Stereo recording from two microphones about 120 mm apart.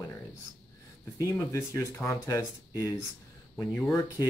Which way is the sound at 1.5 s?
25° left (ahead or behind).